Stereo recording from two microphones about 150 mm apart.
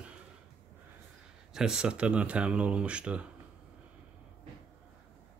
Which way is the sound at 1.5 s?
5° right (ahead or behind).